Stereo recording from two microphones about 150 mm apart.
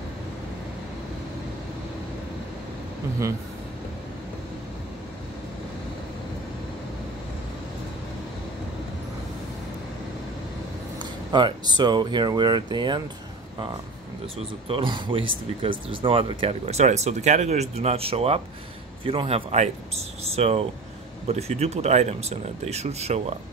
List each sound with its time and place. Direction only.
11.0 s speech: 30° right (ahead or behind)
14.2 s speech: 35° right (ahead or behind)